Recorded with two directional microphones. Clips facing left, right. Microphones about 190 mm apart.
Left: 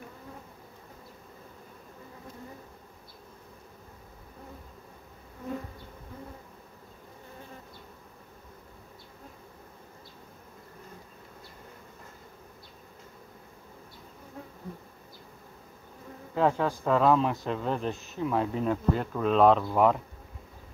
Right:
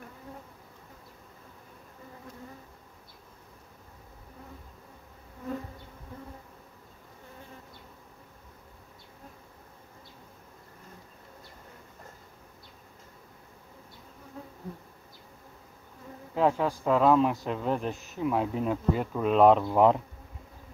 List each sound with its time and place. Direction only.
16.3 s speech: 5° right (ahead or behind)